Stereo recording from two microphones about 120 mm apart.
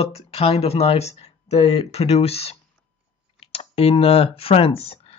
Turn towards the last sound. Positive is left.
turn(degrees=55)  # may be behind; listen again after turning